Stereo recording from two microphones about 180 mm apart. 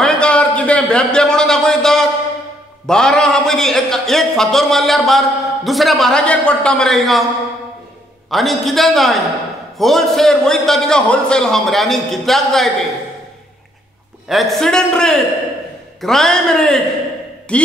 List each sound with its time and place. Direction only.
0.0 s a sound: 5° left (ahead or behind)
2.9 s a man's voice: 5° left (ahead or behind)
8.3 s a man's voice: centre (ahead or behind)
14.3 s a man's voice: centre (ahead or behind)